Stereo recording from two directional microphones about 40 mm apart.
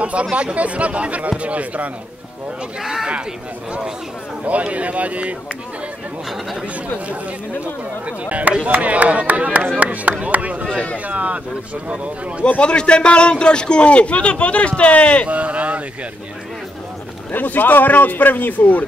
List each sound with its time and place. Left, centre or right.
0.0 s speech: right
2.8 s speech: centre
4.5 s speech: right
8.3 s speech: right
12.4 s speech: left
15.2 s speech: right
17.3 s speech: left